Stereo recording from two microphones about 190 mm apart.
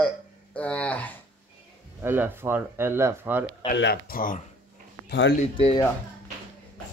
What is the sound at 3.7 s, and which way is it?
Speech, 55° left (ahead or behind).